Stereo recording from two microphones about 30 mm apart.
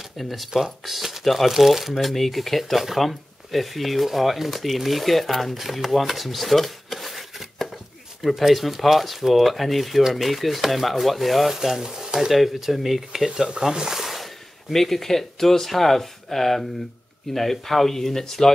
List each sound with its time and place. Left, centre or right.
0.2 s speech: centre
0.8 s a sound: centre
1.2 s speech: centre
11.5 s speech: centre
12.7 s speech: centre
13.3 s speech: right
14.0 s a sound: centre
14.7 s speech: centre